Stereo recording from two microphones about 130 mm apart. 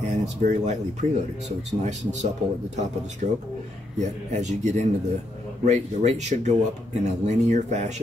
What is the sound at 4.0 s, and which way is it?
Speech, 60° right (ahead or behind).